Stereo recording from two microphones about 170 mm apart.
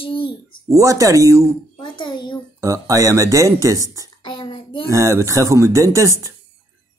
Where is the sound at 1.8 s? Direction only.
25° left (ahead or behind).